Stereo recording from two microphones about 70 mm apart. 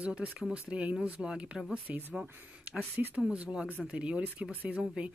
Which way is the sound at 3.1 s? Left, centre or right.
Centre.